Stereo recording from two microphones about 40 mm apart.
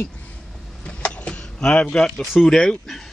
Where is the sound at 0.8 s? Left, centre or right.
Left.